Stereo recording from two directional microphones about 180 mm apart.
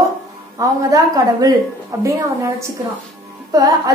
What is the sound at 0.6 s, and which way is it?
A woman's voice, 20° right (ahead or behind).